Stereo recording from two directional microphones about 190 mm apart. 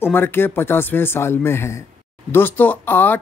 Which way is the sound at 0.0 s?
10° left (ahead or behind).